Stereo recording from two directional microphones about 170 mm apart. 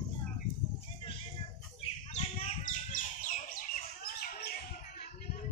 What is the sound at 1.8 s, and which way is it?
Bird, 40° left (ahead or behind).